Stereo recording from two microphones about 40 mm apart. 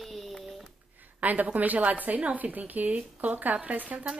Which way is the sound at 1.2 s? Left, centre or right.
Right.